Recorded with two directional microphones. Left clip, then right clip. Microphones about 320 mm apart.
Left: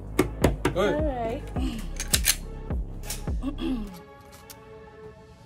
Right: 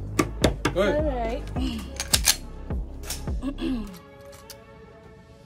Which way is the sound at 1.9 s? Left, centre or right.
Centre.